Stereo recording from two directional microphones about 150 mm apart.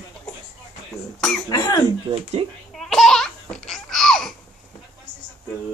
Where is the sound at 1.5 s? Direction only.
25° left (ahead or behind).